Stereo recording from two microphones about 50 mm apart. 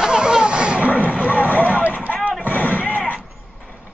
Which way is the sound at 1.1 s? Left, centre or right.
Left.